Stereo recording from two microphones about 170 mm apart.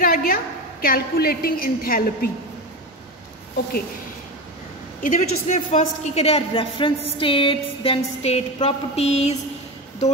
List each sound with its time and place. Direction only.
0.0 s a sound: 60° left (ahead or behind)
0.8 s a woman's voice: 60° left (ahead or behind)
5.0 s a woman's voice: 50° left (ahead or behind)